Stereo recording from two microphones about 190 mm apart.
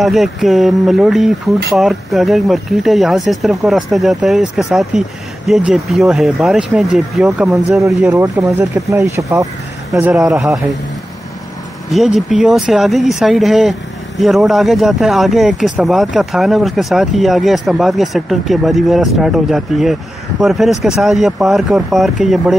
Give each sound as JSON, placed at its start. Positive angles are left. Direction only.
{"t": 0.0, "sound": "speech", "side_deg": 0}
{"t": 8.1, "sound": "speech", "side_deg": -15}
{"t": 9.9, "sound": "speech", "side_deg": -5}
{"t": 11.9, "sound": "speech", "side_deg": 0}